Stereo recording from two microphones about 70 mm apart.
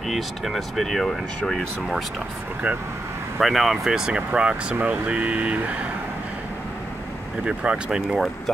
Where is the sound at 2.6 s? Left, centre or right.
Centre.